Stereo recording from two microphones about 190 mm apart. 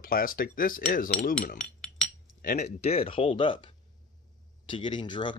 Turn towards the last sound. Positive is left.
turn(degrees=25)  # may be behind; listen again after turning